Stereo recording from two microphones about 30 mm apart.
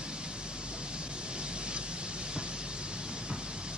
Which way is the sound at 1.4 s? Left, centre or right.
Right.